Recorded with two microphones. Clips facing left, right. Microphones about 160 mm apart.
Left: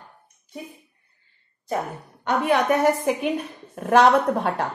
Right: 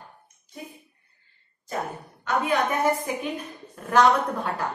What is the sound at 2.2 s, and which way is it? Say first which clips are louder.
A woman's voice: left 4 dB; 75° left (ahead or behind).